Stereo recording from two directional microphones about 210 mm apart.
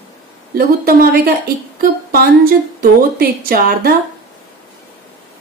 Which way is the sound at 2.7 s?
45° right (ahead or behind).